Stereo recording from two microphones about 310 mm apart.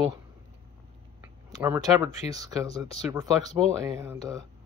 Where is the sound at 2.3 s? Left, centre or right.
Centre.